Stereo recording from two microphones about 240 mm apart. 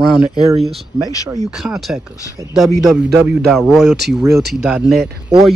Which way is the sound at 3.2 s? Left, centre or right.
Centre.